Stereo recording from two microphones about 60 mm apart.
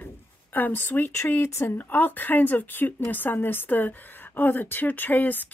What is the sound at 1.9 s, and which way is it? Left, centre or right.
Speech, left.